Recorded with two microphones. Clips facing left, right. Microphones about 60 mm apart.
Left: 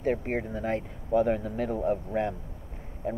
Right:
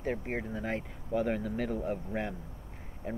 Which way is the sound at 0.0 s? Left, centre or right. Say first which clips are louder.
Left 6 dB; left.